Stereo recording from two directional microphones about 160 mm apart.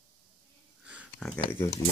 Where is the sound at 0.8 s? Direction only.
5° right (ahead or behind).